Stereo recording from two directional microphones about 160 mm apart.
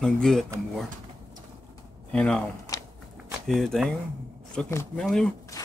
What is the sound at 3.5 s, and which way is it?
Speech, centre (ahead or behind).